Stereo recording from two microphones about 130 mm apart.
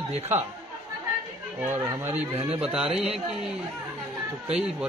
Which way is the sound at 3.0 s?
Centre (ahead or behind).